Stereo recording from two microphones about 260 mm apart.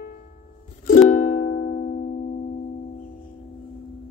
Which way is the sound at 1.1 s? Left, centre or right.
Left.